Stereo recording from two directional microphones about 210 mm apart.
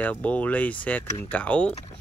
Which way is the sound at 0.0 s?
5° left (ahead or behind).